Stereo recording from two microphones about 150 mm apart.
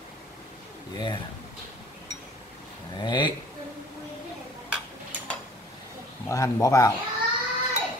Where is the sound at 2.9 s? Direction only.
30° left (ahead or behind).